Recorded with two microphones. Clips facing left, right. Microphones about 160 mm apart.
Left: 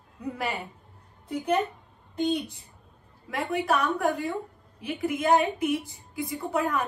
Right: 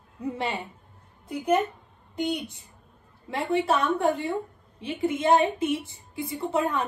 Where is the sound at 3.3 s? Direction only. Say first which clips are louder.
Right 2 dB; 30° right (ahead or behind).